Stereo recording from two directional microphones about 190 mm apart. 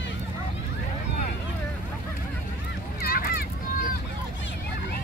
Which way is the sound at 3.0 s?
50° left (ahead or behind).